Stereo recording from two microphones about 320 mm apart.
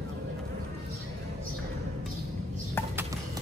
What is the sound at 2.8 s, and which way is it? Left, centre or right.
Music, centre.